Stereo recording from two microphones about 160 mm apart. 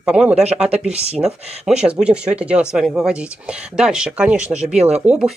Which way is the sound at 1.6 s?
5° right (ahead or behind).